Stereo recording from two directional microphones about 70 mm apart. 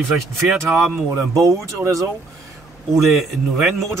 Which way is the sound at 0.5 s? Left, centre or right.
Centre.